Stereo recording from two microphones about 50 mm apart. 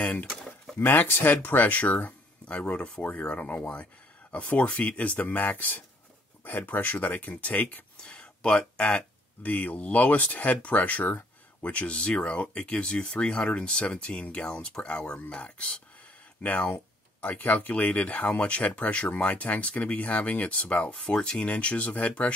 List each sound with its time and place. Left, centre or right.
0.0 s speech: left
0.3 s bird: centre
0.7 s speech: left
8.0 s speech: left
21.0 s speech: centre